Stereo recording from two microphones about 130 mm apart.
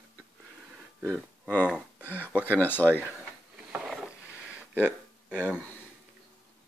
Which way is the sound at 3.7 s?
5° right (ahead or behind).